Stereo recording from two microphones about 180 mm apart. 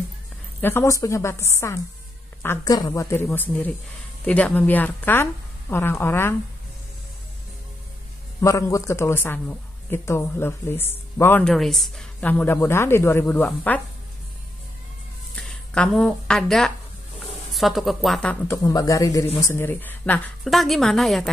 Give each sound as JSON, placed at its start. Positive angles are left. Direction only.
{"t": 0.6, "sound": "speech", "side_deg": 15}
{"t": 8.4, "sound": "speech", "side_deg": 15}
{"t": 15.3, "sound": "a woman's voice", "side_deg": 5}
{"t": 18.6, "sound": "a woman's voice", "side_deg": 20}